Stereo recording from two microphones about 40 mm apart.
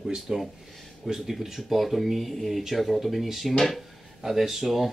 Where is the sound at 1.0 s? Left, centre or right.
Centre.